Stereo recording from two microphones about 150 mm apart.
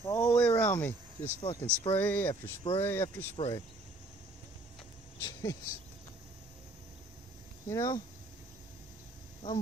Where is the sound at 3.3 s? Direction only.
30° left (ahead or behind).